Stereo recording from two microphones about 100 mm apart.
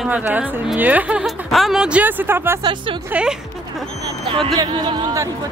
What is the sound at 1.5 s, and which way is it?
A woman's voice, centre (ahead or behind).